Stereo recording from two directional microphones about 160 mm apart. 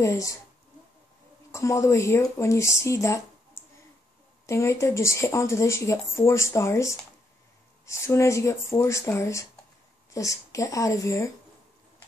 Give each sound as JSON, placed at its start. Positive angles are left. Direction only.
{"t": 0.0, "sound": "speech", "side_deg": 20}
{"t": 1.5, "sound": "speech", "side_deg": 20}